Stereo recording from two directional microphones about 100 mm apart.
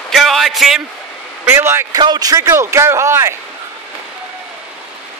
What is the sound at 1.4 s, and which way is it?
Speech, 25° right (ahead or behind).